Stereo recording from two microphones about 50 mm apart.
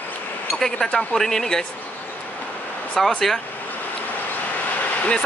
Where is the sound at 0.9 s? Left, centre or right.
Centre.